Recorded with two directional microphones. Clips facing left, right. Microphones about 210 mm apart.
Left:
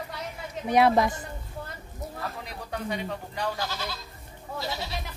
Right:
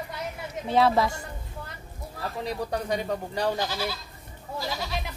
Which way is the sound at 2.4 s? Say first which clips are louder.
Right 6 dB; 40° right (ahead or behind).